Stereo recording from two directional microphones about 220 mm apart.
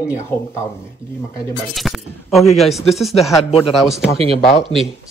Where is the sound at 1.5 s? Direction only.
Centre (ahead or behind).